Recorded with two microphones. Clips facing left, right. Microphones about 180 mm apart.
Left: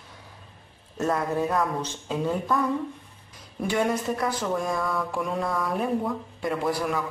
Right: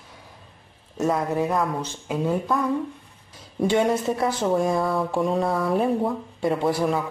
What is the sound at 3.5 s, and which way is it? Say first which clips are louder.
Speech: right 4 dB; 25° right (ahead or behind).